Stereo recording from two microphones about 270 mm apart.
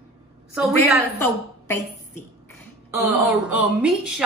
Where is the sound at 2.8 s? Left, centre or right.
Centre.